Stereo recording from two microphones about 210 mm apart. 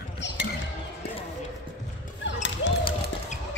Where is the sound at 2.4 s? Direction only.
60° left (ahead or behind).